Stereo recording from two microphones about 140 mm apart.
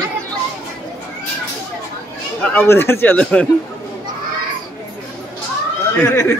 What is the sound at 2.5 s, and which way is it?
Speech, 15° left (ahead or behind).